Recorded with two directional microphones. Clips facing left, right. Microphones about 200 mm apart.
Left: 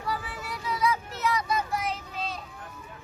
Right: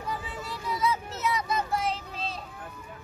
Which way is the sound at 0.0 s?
20° right (ahead or behind).